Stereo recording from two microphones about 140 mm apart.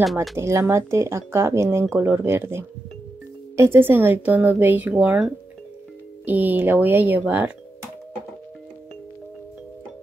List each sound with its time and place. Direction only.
0.0 s speech: centre (ahead or behind)
0.4 s a woman's voice: 20° right (ahead or behind)
6.2 s a woman's voice: 15° right (ahead or behind)